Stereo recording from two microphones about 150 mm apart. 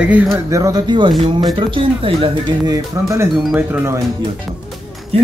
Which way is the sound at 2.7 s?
20° right (ahead or behind).